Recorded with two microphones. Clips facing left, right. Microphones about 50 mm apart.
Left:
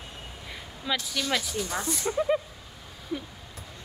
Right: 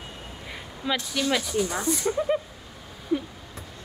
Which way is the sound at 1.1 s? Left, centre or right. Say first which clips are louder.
Right 7 dB; centre.